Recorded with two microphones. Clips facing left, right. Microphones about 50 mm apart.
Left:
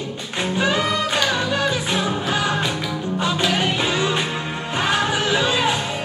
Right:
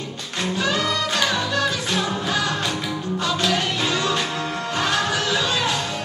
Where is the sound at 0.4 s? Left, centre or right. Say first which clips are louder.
Left 2 dB; centre.